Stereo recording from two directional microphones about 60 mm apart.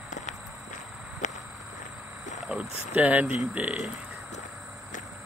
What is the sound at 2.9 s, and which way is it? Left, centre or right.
Speech, right.